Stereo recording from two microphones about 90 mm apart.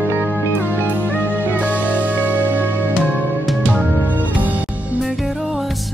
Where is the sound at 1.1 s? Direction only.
20° left (ahead or behind).